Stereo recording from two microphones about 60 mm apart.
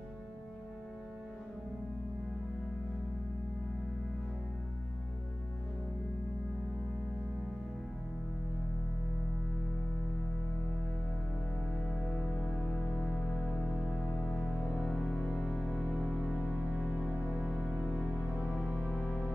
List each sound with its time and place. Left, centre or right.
11.8 s music: centre
14.4 s music: centre
14.9 s music: centre
18.6 s music: centre